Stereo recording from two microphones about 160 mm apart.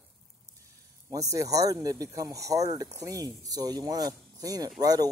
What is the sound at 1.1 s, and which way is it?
Speech, 20° right (ahead or behind).